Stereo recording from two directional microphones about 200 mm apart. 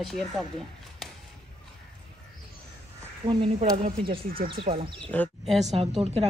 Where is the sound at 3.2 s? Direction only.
30° right (ahead or behind).